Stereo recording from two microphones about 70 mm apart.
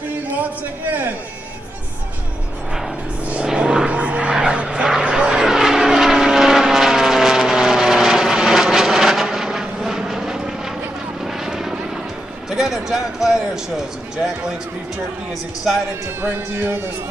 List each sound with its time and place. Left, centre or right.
0.4 s a man's voice: right
3.3 s vehicle: centre
12.4 s music: centre
16.2 s speech: right